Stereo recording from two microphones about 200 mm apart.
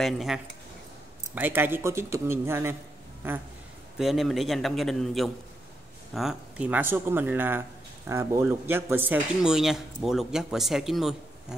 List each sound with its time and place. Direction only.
0.0 s a man's voice: centre (ahead or behind)
4.0 s a man's voice: centre (ahead or behind)